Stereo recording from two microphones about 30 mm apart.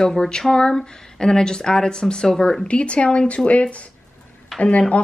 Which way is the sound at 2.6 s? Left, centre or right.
Left.